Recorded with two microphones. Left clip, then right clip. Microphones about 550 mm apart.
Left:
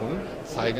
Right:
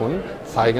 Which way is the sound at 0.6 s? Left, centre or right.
Right.